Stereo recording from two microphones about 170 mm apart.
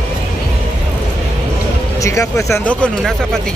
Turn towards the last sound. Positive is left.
turn(degrees=5)  # may be behind; listen again after turning